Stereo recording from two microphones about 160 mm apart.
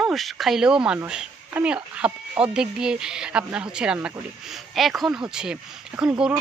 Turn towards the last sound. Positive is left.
turn(degrees=-5)  # may be behind; listen again after turning